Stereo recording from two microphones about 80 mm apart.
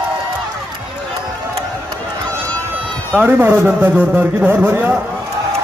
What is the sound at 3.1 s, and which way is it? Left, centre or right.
A man's voice, right.